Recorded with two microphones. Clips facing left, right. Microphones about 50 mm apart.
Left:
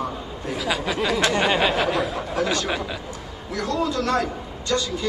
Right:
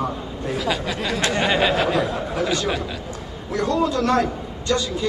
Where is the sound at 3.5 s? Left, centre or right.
Right.